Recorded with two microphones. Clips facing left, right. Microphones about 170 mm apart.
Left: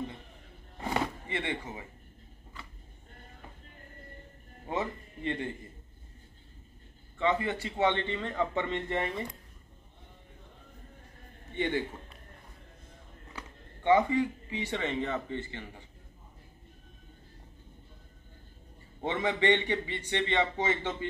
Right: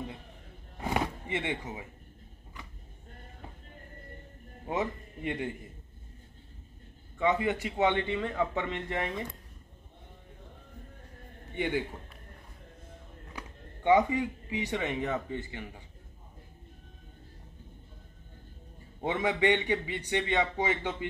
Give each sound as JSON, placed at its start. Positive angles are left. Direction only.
{"t": 0.7, "sound": "a sound", "side_deg": -10}
{"t": 4.6, "sound": "speech", "side_deg": -15}
{"t": 7.2, "sound": "a man's voice", "side_deg": -15}
{"t": 11.5, "sound": "a man's voice", "side_deg": -10}
{"t": 13.3, "sound": "speech", "side_deg": -15}
{"t": 18.9, "sound": "a man's voice", "side_deg": -10}